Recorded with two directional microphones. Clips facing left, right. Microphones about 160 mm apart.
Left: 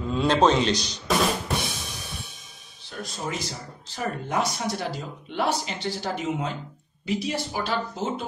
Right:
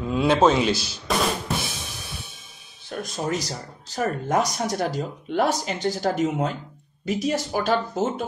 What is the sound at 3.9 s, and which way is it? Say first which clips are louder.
Speech: right 4 dB; 45° right (ahead or behind).